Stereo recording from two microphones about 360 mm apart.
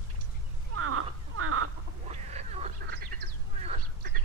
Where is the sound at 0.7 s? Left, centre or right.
Right.